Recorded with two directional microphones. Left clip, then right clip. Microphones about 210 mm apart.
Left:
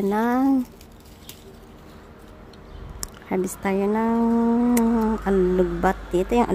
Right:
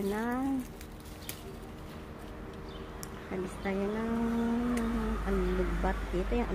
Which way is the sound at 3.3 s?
60° left (ahead or behind).